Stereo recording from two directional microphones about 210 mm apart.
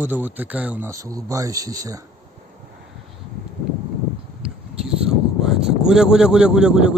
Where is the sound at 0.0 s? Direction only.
10° right (ahead or behind).